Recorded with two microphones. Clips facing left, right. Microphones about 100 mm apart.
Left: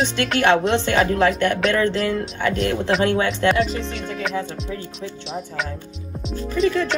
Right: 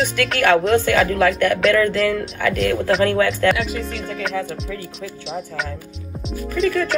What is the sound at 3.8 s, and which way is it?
Speech, 5° right (ahead or behind).